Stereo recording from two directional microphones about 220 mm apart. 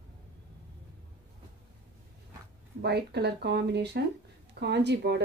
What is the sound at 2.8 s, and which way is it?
Speech, 50° right (ahead or behind).